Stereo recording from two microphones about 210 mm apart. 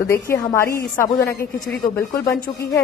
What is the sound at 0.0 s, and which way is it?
A woman's voice, 15° left (ahead or behind).